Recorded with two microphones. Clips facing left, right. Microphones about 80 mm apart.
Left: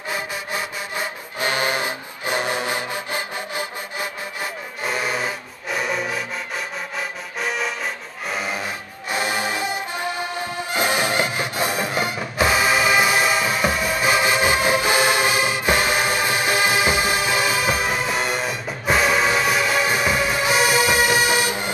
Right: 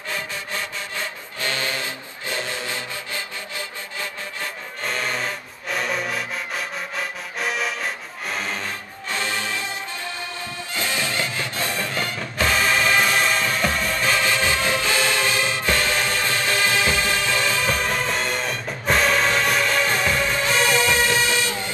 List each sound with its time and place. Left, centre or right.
0.1 s music: centre